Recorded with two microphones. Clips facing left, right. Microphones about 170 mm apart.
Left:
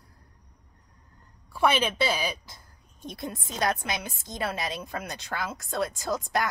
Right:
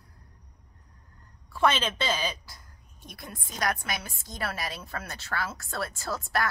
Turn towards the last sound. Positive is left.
turn(degrees=20)  # may be behind; listen again after turning